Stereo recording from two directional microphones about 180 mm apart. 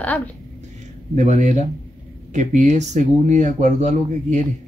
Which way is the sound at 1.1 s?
40° right (ahead or behind).